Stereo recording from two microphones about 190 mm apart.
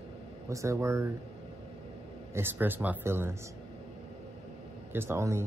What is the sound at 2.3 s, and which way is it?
Speech, 10° right (ahead or behind).